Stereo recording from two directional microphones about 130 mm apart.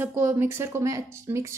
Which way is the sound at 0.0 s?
15° right (ahead or behind).